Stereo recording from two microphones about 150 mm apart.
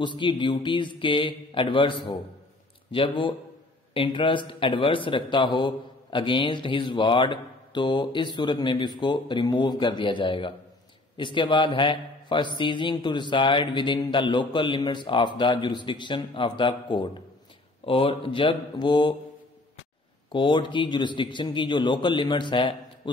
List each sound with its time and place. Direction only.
0.0 s speech: 30° left (ahead or behind)
20.2 s speech: 30° left (ahead or behind)